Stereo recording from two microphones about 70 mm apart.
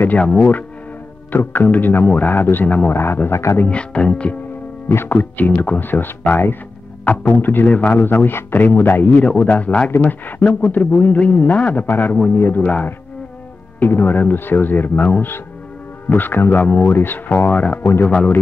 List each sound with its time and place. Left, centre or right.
0.2 s a man's voice: centre; by 3.6 s left
3.6 s speech: centre
4.8 s a man's voice: left
12.6 s speech: centre
13.7 s speech: left
16.1 s speech: left